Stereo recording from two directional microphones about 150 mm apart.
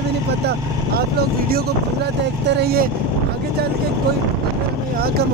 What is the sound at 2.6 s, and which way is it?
Speech, 80° right.